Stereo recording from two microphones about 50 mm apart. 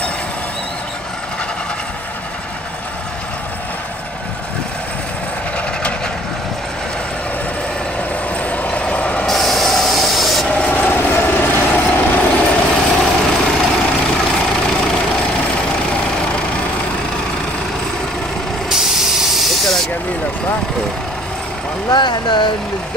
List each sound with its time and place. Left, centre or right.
8.4 s vehicle: left
9.3 s train: centre
10.5 s train: left
10.9 s vehicle: left
12.6 s vehicle: centre
18.7 s vehicle: centre